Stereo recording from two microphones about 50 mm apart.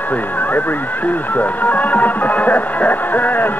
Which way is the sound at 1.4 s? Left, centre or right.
Left.